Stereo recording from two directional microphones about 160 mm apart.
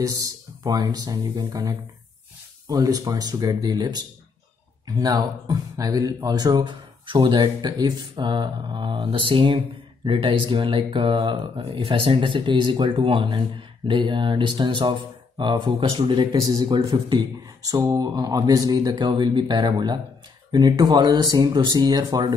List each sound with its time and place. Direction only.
0.0 s speech: 25° right (ahead or behind)